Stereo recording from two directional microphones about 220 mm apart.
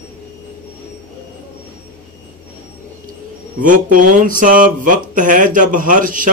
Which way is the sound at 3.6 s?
35° right (ahead or behind).